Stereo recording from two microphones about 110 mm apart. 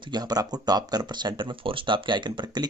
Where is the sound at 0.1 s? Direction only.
40° right (ahead or behind).